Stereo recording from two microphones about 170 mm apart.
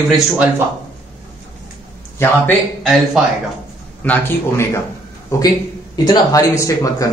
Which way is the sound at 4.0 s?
10° left (ahead or behind).